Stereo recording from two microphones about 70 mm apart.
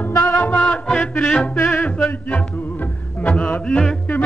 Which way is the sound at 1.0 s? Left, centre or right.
Left.